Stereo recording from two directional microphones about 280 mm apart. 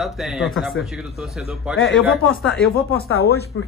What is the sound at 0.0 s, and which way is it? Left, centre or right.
Speech, centre.